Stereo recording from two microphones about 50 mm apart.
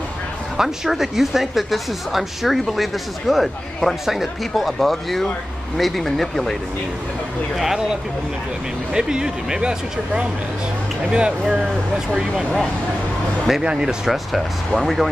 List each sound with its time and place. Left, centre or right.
0.6 s a man's voice: centre
7.5 s a man's voice: centre
8.9 s speech: centre
13.5 s speech: centre
14.8 s a man's voice: centre